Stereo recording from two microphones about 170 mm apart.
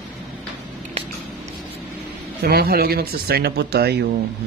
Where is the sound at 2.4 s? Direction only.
65° right (ahead or behind).